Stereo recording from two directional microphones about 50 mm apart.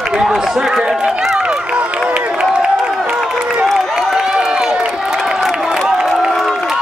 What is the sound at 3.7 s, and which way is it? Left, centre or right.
Crowd, centre.